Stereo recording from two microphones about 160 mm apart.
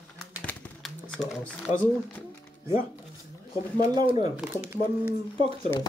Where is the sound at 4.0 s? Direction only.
30° right (ahead or behind).